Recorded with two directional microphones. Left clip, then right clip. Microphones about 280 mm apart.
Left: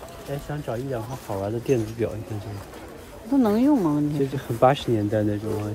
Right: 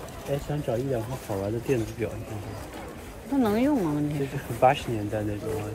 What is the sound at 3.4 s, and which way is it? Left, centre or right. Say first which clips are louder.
Speech: left 4 dB; centre.